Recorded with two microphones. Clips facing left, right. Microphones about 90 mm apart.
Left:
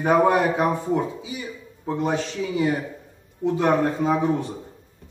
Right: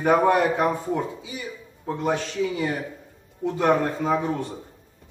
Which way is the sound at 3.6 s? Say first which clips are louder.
Even; 5° left (ahead or behind).